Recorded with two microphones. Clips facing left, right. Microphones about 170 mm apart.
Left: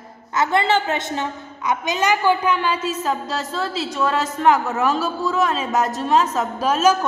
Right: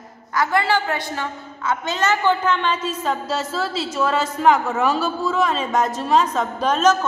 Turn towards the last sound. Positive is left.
turn(degrees=10)  # may be behind; listen again after turning